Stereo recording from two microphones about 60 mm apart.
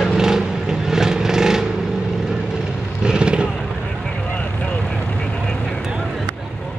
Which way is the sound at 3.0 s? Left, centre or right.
Centre.